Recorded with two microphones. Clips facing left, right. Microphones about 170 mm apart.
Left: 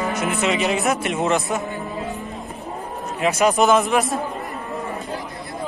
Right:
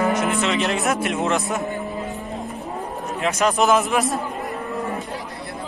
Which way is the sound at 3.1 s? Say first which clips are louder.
Left 2 dB; 5° left (ahead or behind).